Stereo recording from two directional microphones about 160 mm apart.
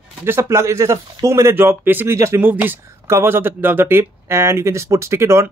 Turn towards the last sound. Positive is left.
turn(degrees=-15)  # may be behind; listen again after turning